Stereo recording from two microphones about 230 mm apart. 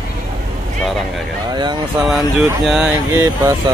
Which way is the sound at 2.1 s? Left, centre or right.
Centre.